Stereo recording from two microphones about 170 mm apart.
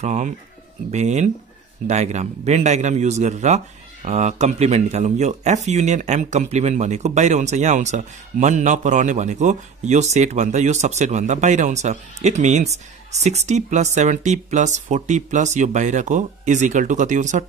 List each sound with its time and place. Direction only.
0.0 s a man's voice: 45° right (ahead or behind)